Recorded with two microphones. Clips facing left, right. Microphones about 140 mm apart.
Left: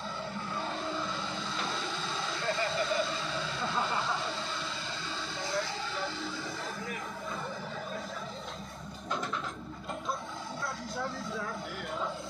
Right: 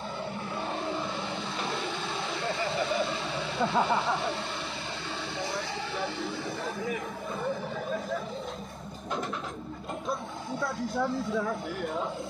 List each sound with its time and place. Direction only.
0.6 s vehicle: 60° right (ahead or behind)
2.3 s a sound: 60° right (ahead or behind)
5.4 s music: 60° right (ahead or behind)